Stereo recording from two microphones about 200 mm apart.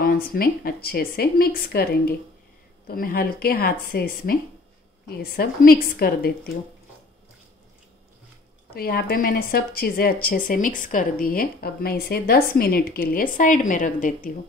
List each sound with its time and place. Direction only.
0.0 s speech: 45° left (ahead or behind)
8.7 s speech: 50° left (ahead or behind)